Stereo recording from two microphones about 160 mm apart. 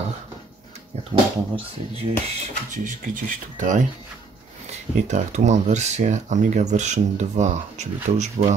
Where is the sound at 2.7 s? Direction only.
55° right (ahead or behind).